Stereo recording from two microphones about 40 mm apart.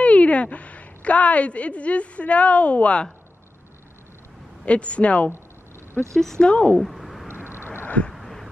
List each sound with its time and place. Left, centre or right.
0.0 s a woman's voice: left
4.6 s speech: left
6.1 s speech: centre
6.4 s speech: left
6.8 s a sound: centre
7.5 s vehicle: left
8.1 s a sound: centre